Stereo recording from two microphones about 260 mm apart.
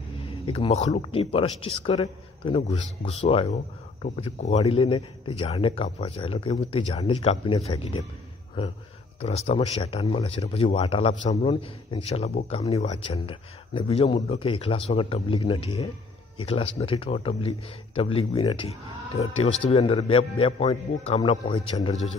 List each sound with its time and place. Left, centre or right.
0.3 s speech: left
9.2 s speech: left